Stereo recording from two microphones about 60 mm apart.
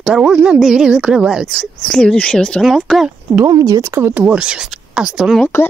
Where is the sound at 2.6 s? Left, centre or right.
Centre.